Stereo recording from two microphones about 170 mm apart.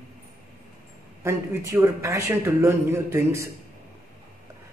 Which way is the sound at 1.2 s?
15° right (ahead or behind).